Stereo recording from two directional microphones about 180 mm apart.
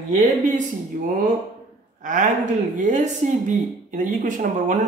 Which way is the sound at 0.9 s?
45° right (ahead or behind).